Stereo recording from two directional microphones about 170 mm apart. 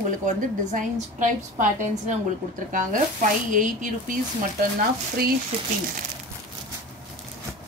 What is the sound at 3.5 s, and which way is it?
Speech, 50° right (ahead or behind).